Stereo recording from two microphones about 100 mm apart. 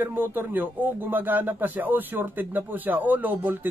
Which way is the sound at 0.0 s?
20° right (ahead or behind).